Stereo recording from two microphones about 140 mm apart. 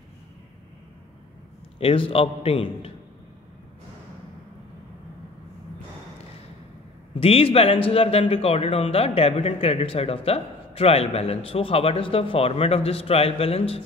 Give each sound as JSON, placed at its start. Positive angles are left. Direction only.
{"t": 1.8, "sound": "a man's voice", "side_deg": 40}
{"t": 7.2, "sound": "a man's voice", "side_deg": 45}